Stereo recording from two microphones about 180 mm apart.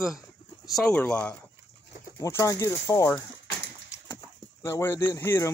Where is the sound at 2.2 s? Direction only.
15° left (ahead or behind).